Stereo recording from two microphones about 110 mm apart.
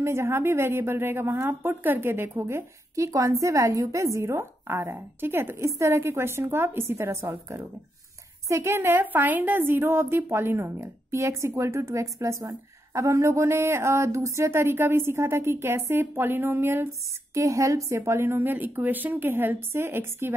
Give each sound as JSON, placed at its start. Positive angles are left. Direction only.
{"t": 0.0, "sound": "a woman's voice", "side_deg": -25}